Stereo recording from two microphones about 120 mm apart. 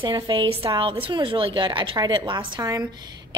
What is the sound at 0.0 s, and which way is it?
A woman's voice, 40° right (ahead or behind).